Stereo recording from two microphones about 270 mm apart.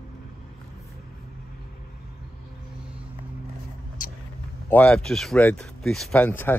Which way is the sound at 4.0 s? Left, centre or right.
Left.